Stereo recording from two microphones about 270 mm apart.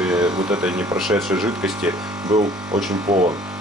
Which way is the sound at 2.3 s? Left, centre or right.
Centre.